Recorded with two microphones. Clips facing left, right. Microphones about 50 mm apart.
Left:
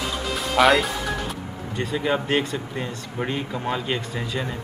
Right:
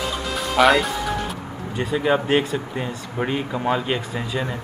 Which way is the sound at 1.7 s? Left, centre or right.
Centre.